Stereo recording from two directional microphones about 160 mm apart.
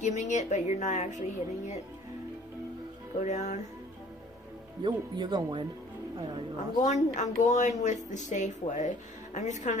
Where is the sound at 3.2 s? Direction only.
50° left (ahead or behind).